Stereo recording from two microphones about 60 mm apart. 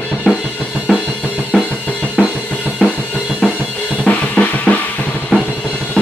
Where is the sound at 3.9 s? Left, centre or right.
Left.